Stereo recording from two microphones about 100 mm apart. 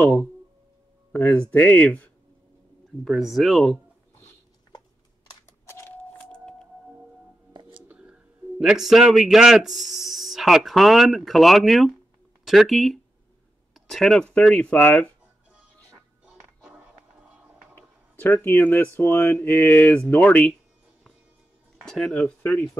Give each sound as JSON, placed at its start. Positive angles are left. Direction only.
{"t": 0.0, "sound": "speech", "side_deg": 15}
{"t": 3.0, "sound": "speech", "side_deg": 0}
{"t": 5.7, "sound": "vehicle", "side_deg": 20}
{"t": 6.3, "sound": "music", "side_deg": 10}
{"t": 7.9, "sound": "a man's voice", "side_deg": -10}
{"t": 18.2, "sound": "speech", "side_deg": 20}
{"t": 21.8, "sound": "speech", "side_deg": 5}